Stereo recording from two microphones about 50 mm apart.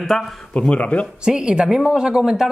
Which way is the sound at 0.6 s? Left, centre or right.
Left.